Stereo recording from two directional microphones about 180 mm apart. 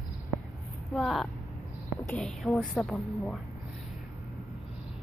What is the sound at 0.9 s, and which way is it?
A woman's voice, centre (ahead or behind).